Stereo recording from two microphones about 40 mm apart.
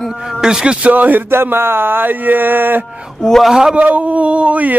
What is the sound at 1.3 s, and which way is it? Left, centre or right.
Speech, right.